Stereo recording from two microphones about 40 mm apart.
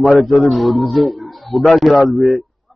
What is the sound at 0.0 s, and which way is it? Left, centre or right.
A man's voice, centre.